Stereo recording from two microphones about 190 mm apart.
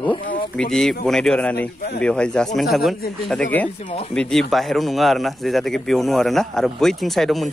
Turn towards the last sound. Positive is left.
turn(degrees=0)  # may be behind; listen again after turning